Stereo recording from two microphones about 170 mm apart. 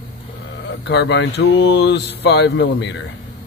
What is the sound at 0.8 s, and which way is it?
Speech, 90° left.